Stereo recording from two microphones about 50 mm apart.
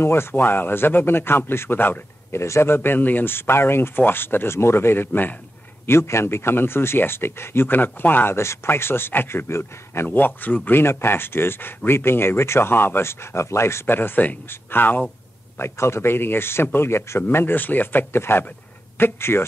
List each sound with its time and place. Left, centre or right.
0.0 s speech: left
2.3 s a man's voice: left
2.7 s speech: left
5.9 s speech: left
8.6 s speech: left
9.5 s a man's voice: left
10.1 s speech: left
10.8 s speech: left
13.8 s speech: left
15.6 s speech: left